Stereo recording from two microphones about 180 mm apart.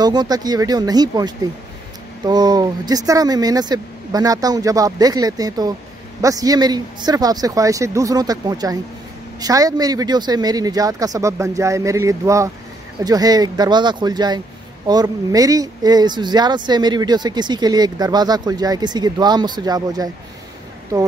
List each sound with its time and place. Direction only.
0.0 s speech: 25° right (ahead or behind)